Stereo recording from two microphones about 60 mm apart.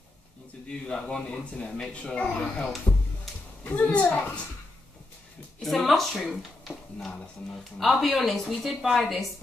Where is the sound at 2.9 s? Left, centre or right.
Left.